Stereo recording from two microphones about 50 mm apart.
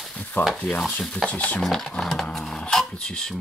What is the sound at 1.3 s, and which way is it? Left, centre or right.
Speech, left.